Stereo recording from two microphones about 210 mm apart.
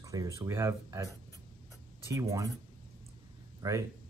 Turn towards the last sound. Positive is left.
turn(degrees=-20)  # may be behind; listen again after turning